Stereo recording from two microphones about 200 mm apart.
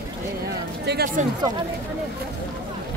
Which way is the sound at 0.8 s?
50° right (ahead or behind).